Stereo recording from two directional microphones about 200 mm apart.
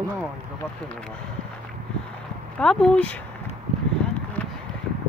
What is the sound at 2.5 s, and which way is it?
Speech, 5° left (ahead or behind).